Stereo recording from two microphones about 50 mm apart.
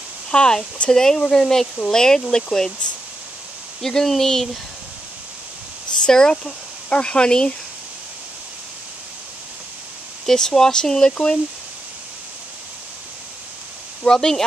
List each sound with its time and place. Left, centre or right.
0.3 s speech: centre
3.8 s speech: centre
6.0 s speech: centre
10.2 s speech: centre
14.0 s speech: centre